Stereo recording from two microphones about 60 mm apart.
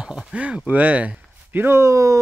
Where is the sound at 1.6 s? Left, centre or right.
Right.